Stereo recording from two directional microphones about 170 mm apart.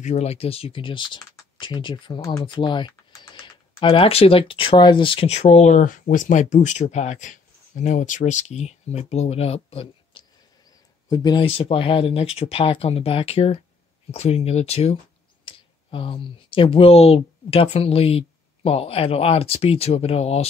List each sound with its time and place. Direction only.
0.0 s speech: 40° left (ahead or behind)